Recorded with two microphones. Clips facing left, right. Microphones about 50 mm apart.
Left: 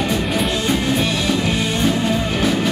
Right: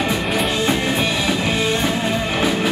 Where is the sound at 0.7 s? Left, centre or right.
Centre.